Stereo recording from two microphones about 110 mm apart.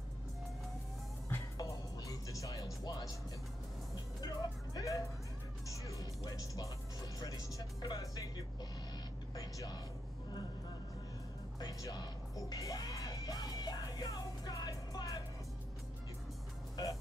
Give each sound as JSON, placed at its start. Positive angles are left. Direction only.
{"t": 1.3, "sound": "music", "side_deg": 30}
{"t": 5.7, "sound": "speech", "side_deg": 30}
{"t": 9.3, "sound": "music", "side_deg": 35}
{"t": 11.6, "sound": "music", "side_deg": 35}